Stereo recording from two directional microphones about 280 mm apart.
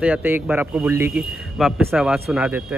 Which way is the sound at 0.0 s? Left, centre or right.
Centre.